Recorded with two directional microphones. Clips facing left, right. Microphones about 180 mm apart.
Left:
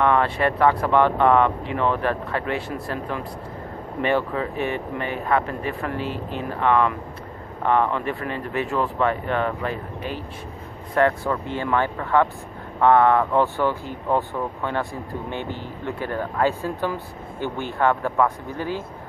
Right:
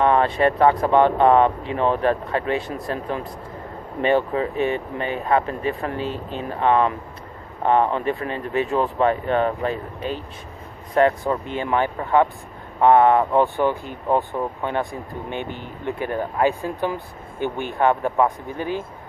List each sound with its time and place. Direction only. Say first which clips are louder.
0.0 s speech: right 2 dB; 25° right (ahead or behind)